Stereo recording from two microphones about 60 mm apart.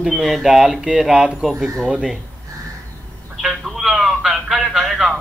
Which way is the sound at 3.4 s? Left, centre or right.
Centre.